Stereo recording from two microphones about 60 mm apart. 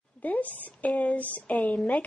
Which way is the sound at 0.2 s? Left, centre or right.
Left.